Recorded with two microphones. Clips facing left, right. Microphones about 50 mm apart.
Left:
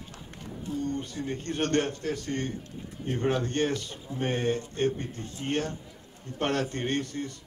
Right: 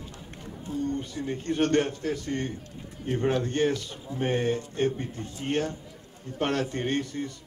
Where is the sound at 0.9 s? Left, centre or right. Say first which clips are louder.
Right 1 dB; right.